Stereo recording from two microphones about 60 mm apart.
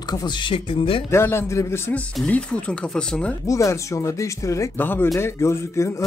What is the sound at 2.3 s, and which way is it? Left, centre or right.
Speech, centre.